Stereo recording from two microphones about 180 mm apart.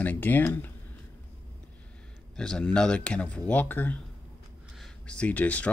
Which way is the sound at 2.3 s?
5° left (ahead or behind).